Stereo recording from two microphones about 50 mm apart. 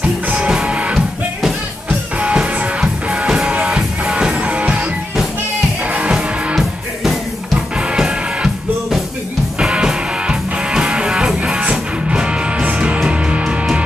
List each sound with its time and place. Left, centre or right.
0.0 s music: centre
6.1 s music: centre
7.5 s music: centre
9.6 s music: centre